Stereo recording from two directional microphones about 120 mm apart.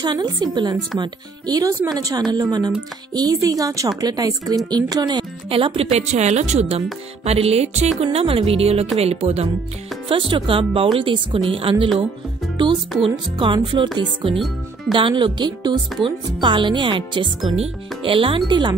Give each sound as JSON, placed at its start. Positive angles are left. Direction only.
{"t": 0.0, "sound": "speech", "side_deg": -35}
{"t": 10.0, "sound": "speech", "side_deg": -45}
{"t": 13.0, "sound": "speech", "side_deg": -45}
{"t": 14.9, "sound": "speech", "side_deg": -45}